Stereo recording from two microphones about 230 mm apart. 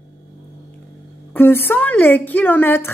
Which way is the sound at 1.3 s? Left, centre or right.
Centre.